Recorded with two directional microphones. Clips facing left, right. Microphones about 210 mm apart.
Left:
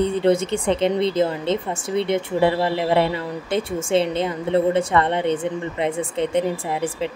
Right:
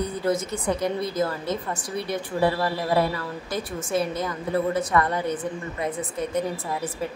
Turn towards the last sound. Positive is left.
turn(degrees=25)  # may be behind; listen again after turning